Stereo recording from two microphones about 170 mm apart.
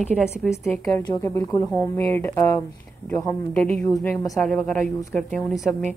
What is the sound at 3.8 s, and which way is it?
Speech, 20° left (ahead or behind).